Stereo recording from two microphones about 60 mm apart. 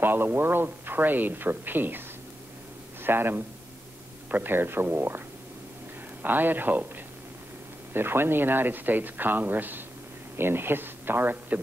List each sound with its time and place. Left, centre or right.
0.0 s a man's voice: right
6.2 s speech: right
7.9 s speech: right